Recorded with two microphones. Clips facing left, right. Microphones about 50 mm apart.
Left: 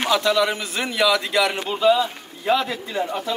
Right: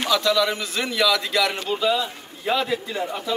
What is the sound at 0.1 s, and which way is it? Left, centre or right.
A man's voice, left.